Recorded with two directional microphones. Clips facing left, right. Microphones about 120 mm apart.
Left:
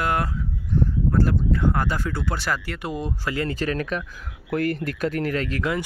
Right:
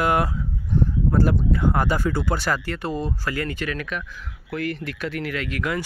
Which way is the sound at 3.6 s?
35° left (ahead or behind).